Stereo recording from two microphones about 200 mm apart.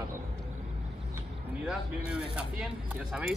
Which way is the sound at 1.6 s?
5° right (ahead or behind).